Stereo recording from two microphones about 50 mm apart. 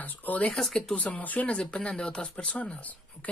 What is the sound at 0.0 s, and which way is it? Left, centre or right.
Speech, left.